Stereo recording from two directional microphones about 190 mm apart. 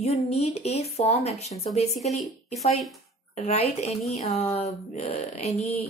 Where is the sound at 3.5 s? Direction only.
35° left (ahead or behind).